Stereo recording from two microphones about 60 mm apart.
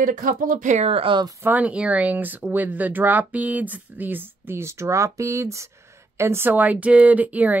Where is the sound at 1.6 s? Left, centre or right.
Right.